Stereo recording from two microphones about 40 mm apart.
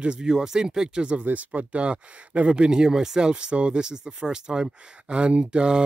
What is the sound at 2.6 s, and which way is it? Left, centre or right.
Speech, centre.